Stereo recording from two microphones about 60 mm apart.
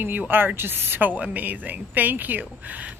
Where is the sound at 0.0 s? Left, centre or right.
Right.